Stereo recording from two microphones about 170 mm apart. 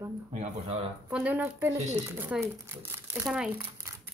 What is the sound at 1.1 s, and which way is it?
Speech, 10° right (ahead or behind).